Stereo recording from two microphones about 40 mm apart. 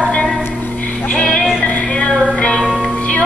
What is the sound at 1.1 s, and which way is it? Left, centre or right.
Music, left.